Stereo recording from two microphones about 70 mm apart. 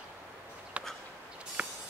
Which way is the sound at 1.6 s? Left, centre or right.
Centre.